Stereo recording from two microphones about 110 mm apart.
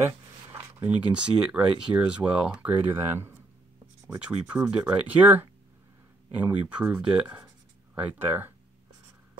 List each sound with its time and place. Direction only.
0.8 s speech: 10° right (ahead or behind)